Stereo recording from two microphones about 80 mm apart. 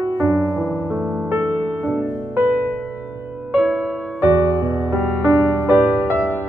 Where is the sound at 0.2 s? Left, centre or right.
Right.